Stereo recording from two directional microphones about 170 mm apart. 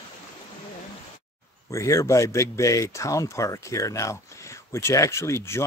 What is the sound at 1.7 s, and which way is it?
Speech, 20° left (ahead or behind).